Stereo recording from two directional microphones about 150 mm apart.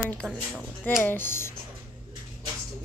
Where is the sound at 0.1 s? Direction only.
5° left (ahead or behind).